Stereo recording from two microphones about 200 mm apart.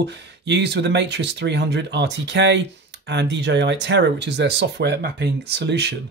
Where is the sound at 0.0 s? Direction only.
60° right (ahead or behind).